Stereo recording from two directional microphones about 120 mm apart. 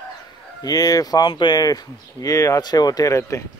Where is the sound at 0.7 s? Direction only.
30° left (ahead or behind).